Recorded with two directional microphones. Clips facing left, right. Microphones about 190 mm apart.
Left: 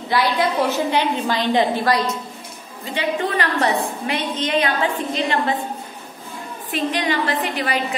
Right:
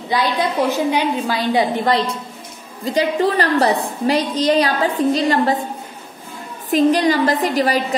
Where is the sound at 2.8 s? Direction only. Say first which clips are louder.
Right 6 dB; 40° right (ahead or behind).